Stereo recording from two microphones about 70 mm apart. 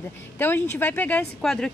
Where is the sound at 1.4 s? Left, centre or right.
Centre.